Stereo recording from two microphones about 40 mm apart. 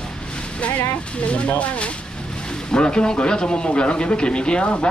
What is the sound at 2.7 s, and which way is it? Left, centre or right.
Speech, centre.